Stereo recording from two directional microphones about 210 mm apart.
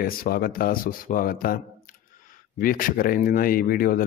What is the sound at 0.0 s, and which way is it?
Speech, 45° left (ahead or behind).